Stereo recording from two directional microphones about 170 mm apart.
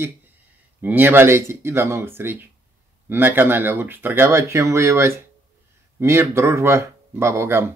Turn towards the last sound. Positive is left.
turn(degrees=-15)  # may be behind; listen again after turning